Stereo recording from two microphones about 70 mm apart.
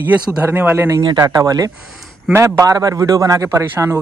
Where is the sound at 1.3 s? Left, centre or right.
Right.